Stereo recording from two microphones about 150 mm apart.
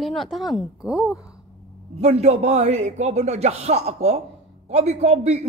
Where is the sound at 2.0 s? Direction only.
45° right (ahead or behind).